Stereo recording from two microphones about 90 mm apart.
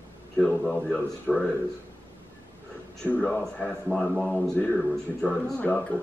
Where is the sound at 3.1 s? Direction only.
15° left (ahead or behind).